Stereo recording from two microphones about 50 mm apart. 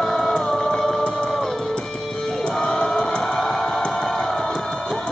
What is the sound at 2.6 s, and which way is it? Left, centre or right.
Crowd, centre.